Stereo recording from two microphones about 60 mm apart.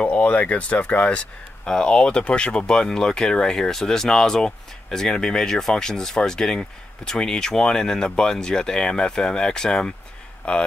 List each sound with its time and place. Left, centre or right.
0.0 s speech: left
1.7 s speech: centre